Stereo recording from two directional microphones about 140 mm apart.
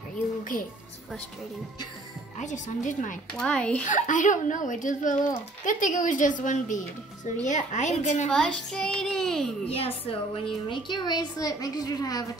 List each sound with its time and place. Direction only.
2.3 s a child's voice: 60° left (ahead or behind)
3.3 s a child's voice: 5° left (ahead or behind)
3.8 s a child's voice: 65° left (ahead or behind)
8.3 s a child's voice: 5° left (ahead or behind)
9.7 s a woman's voice: 45° left (ahead or behind); by 12.3 s 25° left (ahead or behind)